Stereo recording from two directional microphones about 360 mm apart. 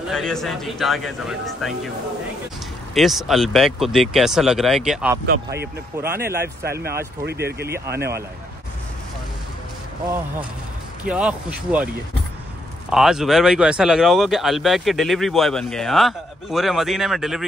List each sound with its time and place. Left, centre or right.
0.1 s speech: centre
2.9 s speech: centre
5.2 s speech: right
6.0 s speech: centre
6.7 s speech: right
11.1 s speech: centre
12.9 s speech: centre